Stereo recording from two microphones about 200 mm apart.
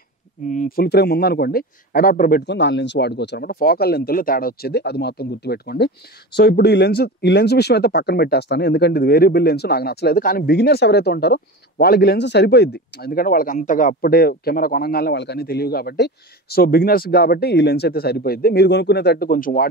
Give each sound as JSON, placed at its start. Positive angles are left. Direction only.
{"t": 0.5, "sound": "speech", "side_deg": 45}